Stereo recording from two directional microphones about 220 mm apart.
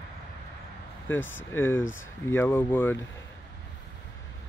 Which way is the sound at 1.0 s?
10° left (ahead or behind).